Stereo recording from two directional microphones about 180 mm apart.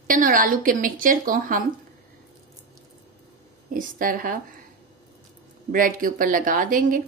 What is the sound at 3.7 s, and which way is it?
Speech, 50° right (ahead or behind).